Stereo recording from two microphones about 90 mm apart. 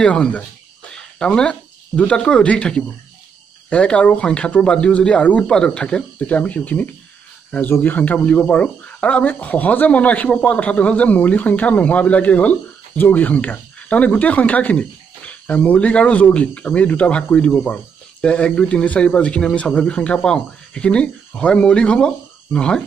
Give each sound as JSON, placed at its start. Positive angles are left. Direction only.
{"t": 0.0, "sound": "speech", "side_deg": 15}